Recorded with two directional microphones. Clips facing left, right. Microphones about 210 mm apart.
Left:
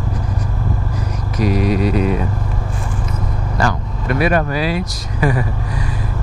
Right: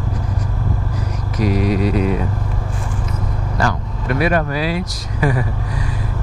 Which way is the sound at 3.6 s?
15° left (ahead or behind).